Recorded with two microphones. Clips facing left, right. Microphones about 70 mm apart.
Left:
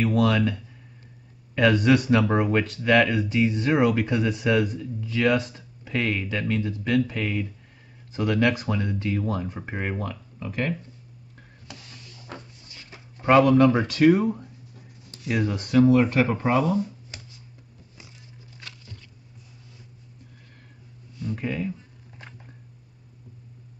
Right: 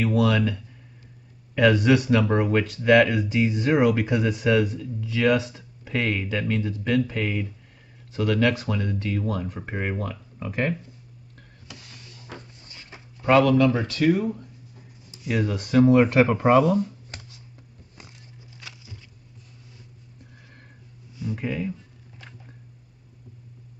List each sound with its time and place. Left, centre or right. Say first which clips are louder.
0.0 s speech: even; centre
10.4 s speech: right 2 dB; right
13.2 s speech: left 1 dB; left
14.0 s speech: left 4 dB; left
15.2 s speech: even; centre
16.1 s speech: right 4 dB; right
16.5 s a sound: right 4 dB; right
18.6 s a sound: even; centre
21.2 s speech: even; centre